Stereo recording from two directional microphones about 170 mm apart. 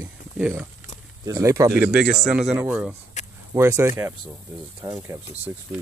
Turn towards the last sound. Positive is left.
turn(degrees=-15)  # may be behind; listen again after turning